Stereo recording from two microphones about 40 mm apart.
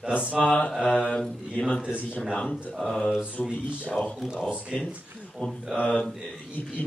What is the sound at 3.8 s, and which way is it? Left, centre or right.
Mantra, left.